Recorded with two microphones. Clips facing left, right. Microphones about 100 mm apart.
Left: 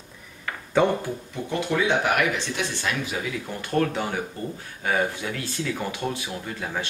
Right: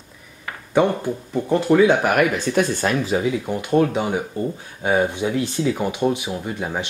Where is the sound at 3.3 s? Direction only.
20° right (ahead or behind).